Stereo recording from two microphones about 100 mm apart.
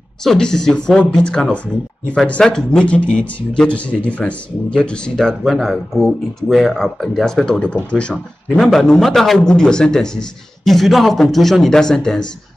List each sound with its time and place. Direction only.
0.2 s a man's voice: 5° left (ahead or behind)